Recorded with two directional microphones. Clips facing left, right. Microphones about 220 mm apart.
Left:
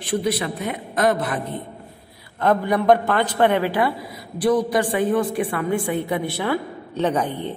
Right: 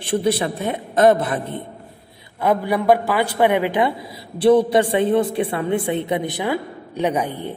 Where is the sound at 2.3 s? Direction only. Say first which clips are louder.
Even; 10° right (ahead or behind).